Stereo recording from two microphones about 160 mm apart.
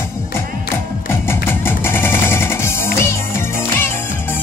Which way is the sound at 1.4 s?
15° left (ahead or behind).